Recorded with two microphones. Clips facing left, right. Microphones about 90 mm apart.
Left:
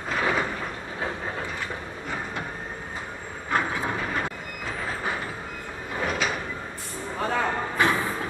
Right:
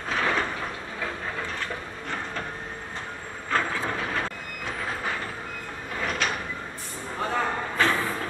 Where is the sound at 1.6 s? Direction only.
15° left (ahead or behind).